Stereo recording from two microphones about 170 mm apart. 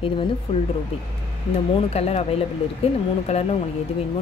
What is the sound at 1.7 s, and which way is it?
A woman's voice, 35° left (ahead or behind).